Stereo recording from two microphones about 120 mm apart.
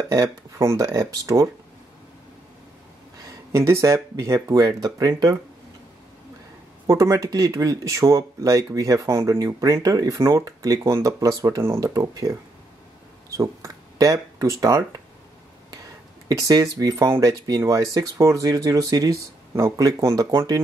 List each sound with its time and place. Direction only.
0.1 s speech: 25° right (ahead or behind)
3.3 s speech: 25° right (ahead or behind)
6.9 s speech: 25° right (ahead or behind)
16.3 s speech: 30° right (ahead or behind)